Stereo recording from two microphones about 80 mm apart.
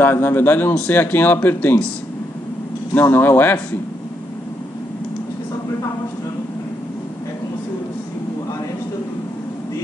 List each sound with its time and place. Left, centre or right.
0.0 s speech: left
2.9 s speech: left